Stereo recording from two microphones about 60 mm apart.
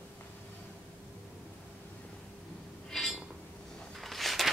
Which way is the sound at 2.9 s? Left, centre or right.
Centre.